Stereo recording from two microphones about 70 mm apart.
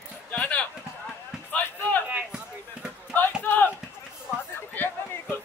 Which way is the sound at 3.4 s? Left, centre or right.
Left.